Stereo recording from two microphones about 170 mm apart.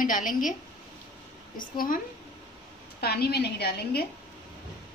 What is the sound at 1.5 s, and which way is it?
Speech, 55° left (ahead or behind).